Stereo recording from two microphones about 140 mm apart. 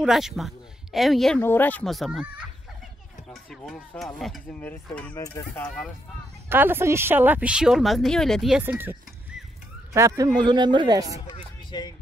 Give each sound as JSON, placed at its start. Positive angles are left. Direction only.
{"t": 0.0, "sound": "speech", "side_deg": -5}
{"t": 1.4, "sound": "speech", "side_deg": 15}
{"t": 1.9, "sound": "speech", "side_deg": 0}
{"t": 4.0, "sound": "speech", "side_deg": 0}
{"t": 5.1, "sound": "speech", "side_deg": 25}
{"t": 5.6, "sound": "speech", "side_deg": 5}
{"t": 6.5, "sound": "speech", "side_deg": -15}
{"t": 8.6, "sound": "a sound", "side_deg": -15}
{"t": 9.9, "sound": "a man's voice", "side_deg": -25}
{"t": 11.2, "sound": "music", "side_deg": 30}